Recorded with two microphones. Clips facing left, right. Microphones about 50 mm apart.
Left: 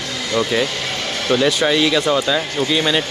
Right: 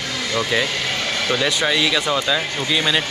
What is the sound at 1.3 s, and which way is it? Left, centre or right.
Speech, centre.